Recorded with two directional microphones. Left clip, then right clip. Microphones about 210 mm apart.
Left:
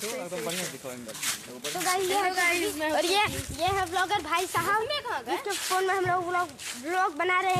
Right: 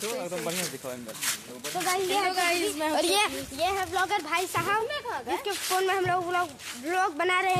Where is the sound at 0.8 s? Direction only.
35° right (ahead or behind).